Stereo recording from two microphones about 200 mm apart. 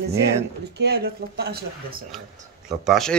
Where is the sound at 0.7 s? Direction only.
55° right (ahead or behind).